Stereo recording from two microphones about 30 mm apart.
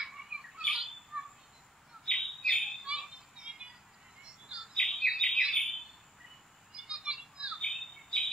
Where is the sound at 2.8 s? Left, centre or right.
Right.